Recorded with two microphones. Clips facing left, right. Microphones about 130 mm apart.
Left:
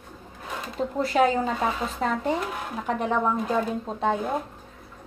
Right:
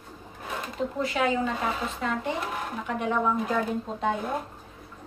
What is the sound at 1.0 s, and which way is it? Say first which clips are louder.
Speech: left 6 dB; 40° left (ahead or behind).